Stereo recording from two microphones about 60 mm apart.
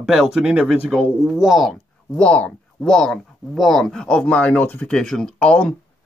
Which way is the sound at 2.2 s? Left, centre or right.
Centre.